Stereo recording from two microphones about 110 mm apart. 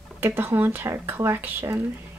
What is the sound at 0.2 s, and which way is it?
A woman's voice, 20° right (ahead or behind).